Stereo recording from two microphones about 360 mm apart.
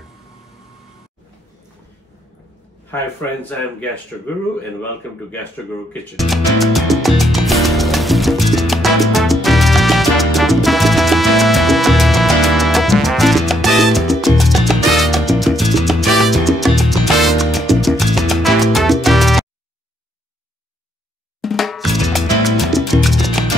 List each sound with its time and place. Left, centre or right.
2.9 s speech: centre
6.1 s music: centre
21.4 s salsa music: centre